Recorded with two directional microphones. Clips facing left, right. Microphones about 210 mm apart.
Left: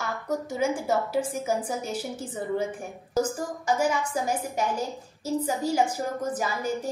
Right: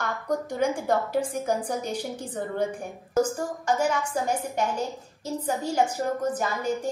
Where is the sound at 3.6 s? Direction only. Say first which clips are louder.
Even; 10° left (ahead or behind).